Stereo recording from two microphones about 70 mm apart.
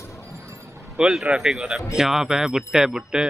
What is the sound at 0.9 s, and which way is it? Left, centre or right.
Speech, centre.